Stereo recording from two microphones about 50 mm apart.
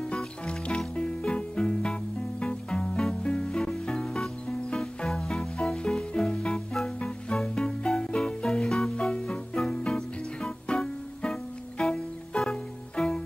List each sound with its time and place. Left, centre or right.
0.1 s music: centre
3.9 s music: centre